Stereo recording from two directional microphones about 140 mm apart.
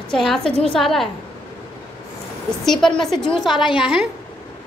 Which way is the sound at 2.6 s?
Centre (ahead or behind).